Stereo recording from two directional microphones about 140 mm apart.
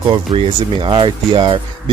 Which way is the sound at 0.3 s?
35° right (ahead or behind).